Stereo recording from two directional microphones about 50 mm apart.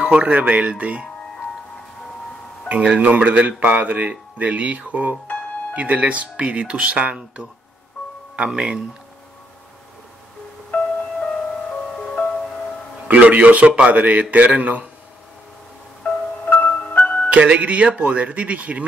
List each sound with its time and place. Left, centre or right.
0.0 s speech: centre
2.7 s speech: right
8.5 s speech: centre
10.7 s music: left
13.1 s speech: right
16.0 s music: left
17.3 s speech: right